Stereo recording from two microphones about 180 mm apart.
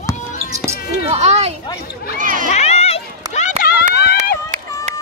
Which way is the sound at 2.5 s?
35° left (ahead or behind).